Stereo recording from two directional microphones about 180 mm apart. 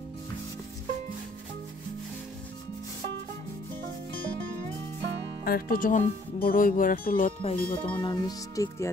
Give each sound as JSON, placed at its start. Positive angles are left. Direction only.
{"t": 5.4, "sound": "speech", "side_deg": 55}
{"t": 7.4, "sound": "speech", "side_deg": 30}